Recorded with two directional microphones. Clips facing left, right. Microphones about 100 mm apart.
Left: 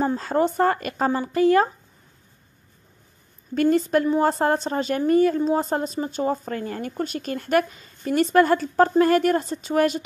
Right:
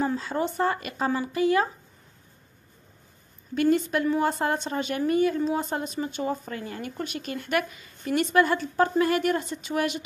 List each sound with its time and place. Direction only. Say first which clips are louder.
0.0 s a woman's voice: left 5 dB; 40° left (ahead or behind)
3.6 s a woman's voice: left 3 dB; 35° left (ahead or behind)